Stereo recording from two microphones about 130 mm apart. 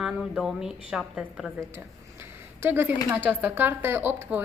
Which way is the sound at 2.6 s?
20° right (ahead or behind).